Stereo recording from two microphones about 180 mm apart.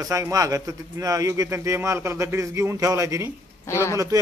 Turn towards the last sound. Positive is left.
turn(degrees=-20)  # may be behind; listen again after turning